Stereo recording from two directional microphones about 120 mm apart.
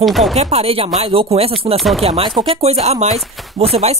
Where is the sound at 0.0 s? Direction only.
Centre (ahead or behind).